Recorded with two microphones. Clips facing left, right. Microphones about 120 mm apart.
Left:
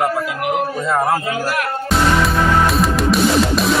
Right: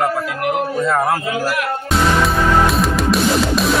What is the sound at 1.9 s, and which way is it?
Music, centre (ahead or behind).